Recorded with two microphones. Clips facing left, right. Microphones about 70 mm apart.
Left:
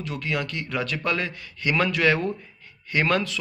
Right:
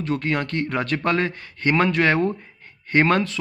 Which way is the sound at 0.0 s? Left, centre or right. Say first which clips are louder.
Right 5 dB; right.